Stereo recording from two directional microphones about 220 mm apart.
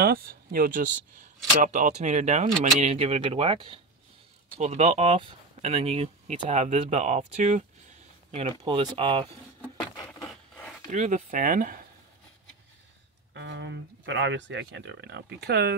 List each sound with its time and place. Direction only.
0.0 s speech: 45° right (ahead or behind); by 9.3 s 25° right (ahead or behind)
10.9 s speech: 35° right (ahead or behind)
13.3 s speech: 55° right (ahead or behind)